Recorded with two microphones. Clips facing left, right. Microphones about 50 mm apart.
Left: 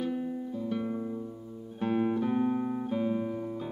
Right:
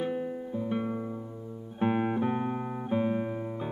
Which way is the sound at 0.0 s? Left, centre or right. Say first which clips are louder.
Right 1 dB; right.